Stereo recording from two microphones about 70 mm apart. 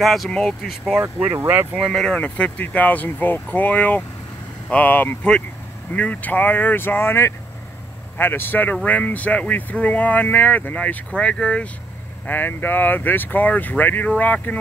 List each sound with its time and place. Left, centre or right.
0.0 s speech: centre
1.4 s speech: right
1.9 s speech: centre
2.1 s speech: centre
12.3 s speech: left